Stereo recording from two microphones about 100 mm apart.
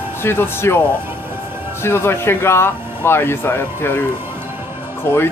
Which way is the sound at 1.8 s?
25° left (ahead or behind).